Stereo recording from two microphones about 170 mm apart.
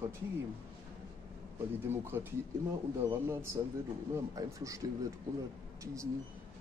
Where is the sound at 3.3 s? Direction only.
15° right (ahead or behind).